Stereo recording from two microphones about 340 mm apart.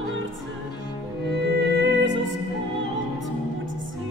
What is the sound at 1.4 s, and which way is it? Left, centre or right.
Music, right.